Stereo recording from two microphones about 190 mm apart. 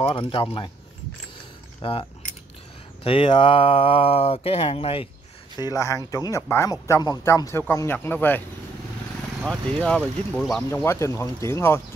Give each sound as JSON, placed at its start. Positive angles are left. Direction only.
{"t": 0.0, "sound": "speech", "side_deg": 25}
{"t": 1.8, "sound": "speech", "side_deg": 30}
{"t": 5.6, "sound": "speech", "side_deg": 15}
{"t": 9.4, "sound": "speech", "side_deg": 5}